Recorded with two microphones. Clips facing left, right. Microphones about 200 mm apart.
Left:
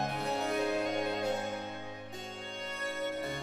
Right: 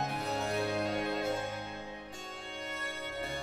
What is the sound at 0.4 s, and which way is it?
Music, 15° left (ahead or behind).